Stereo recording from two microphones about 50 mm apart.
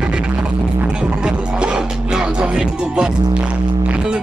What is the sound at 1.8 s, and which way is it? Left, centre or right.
Music, centre.